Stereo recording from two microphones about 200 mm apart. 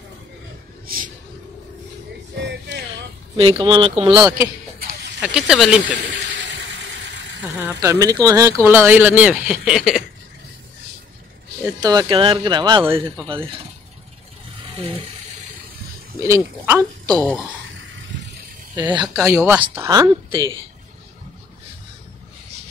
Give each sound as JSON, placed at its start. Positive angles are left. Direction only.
{"t": 0.8, "sound": "a sound", "side_deg": -45}
{"t": 2.3, "sound": "music", "side_deg": -60}
{"t": 3.3, "sound": "speech", "side_deg": -25}
{"t": 4.2, "sound": "speech", "side_deg": -10}
{"t": 7.6, "sound": "speech", "side_deg": -15}
{"t": 11.8, "sound": "speech", "side_deg": -20}
{"t": 13.3, "sound": "speech", "side_deg": -25}
{"t": 14.8, "sound": "speech", "side_deg": -30}
{"t": 16.2, "sound": "speech", "side_deg": -15}
{"t": 17.1, "sound": "speech", "side_deg": 5}
{"t": 18.9, "sound": "speech", "side_deg": -15}